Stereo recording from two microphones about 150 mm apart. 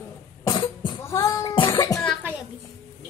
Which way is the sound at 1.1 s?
20° left (ahead or behind).